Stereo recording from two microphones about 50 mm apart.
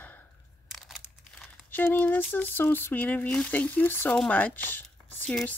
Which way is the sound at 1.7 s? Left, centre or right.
Left.